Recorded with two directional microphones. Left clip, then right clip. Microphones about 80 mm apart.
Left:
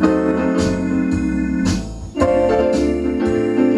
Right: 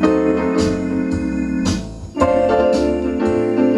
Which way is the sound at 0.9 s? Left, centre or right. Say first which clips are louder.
Left 1 dB; centre.